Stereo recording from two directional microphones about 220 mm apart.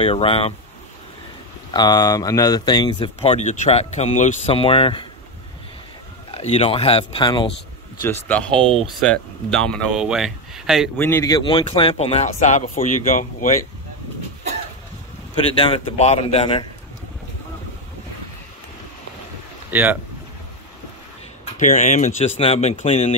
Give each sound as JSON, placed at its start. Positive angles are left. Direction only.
{"t": 0.0, "sound": "speech", "side_deg": 25}
{"t": 1.7, "sound": "speech", "side_deg": 20}
{"t": 6.3, "sound": "speech", "side_deg": 25}
{"t": 8.0, "sound": "speech", "side_deg": 10}
{"t": 11.0, "sound": "speech", "side_deg": 10}
{"t": 15.6, "sound": "speech", "side_deg": 30}
{"t": 19.7, "sound": "speech", "side_deg": -10}
{"t": 21.5, "sound": "speech", "side_deg": 35}